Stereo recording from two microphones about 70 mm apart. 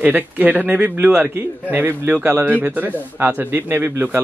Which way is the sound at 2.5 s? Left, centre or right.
Right.